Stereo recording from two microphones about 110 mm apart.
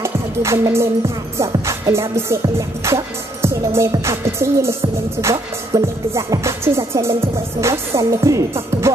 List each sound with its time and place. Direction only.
0.0 s music: 25° right (ahead or behind)